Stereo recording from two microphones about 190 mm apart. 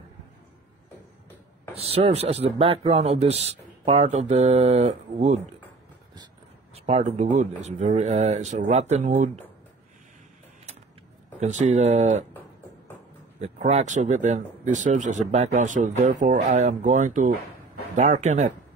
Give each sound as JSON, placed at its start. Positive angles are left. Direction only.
{"t": 1.7, "sound": "speech", "side_deg": -30}
{"t": 6.7, "sound": "speech", "side_deg": -35}
{"t": 11.3, "sound": "speech", "side_deg": -40}
{"t": 13.4, "sound": "speech", "side_deg": -35}